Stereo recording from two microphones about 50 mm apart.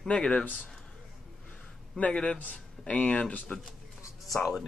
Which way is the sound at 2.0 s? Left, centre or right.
Left.